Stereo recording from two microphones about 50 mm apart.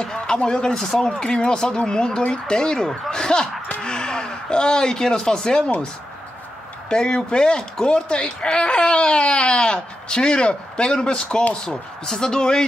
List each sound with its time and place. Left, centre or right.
0.0 s speech: centre
6.9 s speech: centre